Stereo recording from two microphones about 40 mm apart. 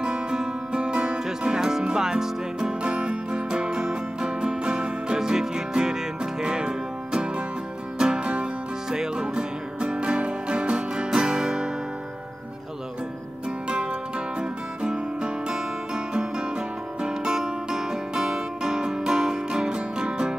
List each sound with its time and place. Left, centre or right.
0.0 s music: centre
2.8 s music: right
13.7 s music: right